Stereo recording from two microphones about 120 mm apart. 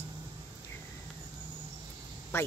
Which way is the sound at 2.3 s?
20° left (ahead or behind).